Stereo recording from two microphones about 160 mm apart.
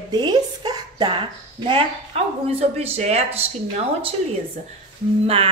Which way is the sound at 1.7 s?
35° right (ahead or behind).